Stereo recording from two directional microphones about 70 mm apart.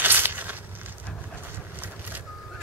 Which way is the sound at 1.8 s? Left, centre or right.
Right.